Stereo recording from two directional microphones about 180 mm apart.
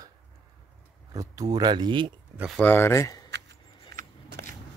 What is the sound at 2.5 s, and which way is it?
Speech, 10° left (ahead or behind).